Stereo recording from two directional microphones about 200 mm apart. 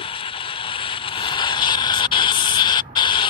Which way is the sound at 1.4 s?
20° left (ahead or behind).